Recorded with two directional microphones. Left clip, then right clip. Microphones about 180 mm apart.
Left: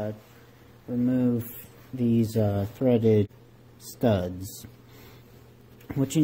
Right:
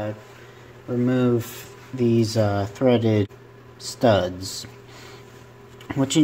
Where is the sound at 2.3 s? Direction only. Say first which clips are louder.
Right 5 dB; 25° left (ahead or behind).